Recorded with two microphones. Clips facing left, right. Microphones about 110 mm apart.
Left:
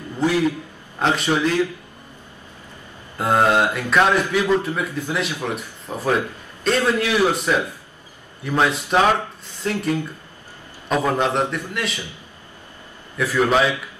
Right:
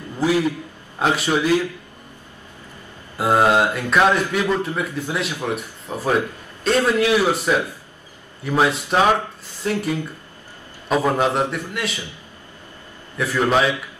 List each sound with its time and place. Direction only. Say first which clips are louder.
0.2 s a man's voice: even; 5° right (ahead or behind)
3.2 s mantra: right 1 dB; 5° right (ahead or behind)
5.5 s speech: right 2 dB; 5° right (ahead or behind)
6.7 s mantra: right 2 dB; centre (ahead or behind)
10.9 s mantra: right 1 dB; 5° right (ahead or behind)
13.2 s mantra: left 1 dB; centre (ahead or behind)